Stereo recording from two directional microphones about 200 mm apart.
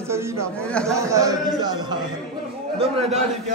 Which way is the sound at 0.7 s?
5° left (ahead or behind).